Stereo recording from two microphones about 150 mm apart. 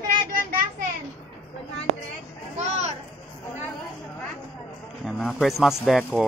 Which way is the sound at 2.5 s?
50° right (ahead or behind).